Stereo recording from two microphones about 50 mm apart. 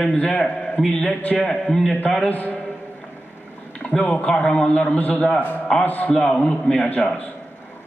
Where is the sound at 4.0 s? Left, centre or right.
Centre.